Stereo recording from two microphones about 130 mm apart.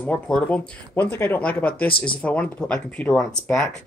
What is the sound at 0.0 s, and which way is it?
Speech, 10° left (ahead or behind).